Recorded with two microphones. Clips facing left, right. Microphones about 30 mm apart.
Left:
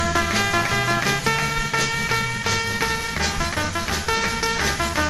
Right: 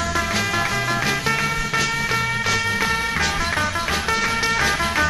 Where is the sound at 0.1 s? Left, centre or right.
Centre.